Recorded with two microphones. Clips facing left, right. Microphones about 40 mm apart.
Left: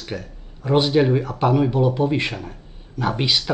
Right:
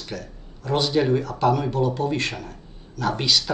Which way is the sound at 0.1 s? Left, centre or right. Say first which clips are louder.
Left 4 dB; left.